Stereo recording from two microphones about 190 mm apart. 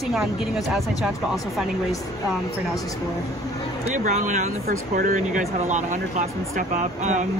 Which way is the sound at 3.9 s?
40° right (ahead or behind).